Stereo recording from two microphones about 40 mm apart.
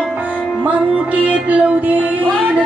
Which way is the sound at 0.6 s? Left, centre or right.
Right.